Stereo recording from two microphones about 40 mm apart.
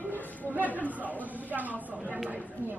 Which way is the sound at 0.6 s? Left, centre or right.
Left.